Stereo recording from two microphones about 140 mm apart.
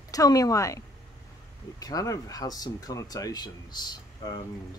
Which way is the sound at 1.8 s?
25° left (ahead or behind).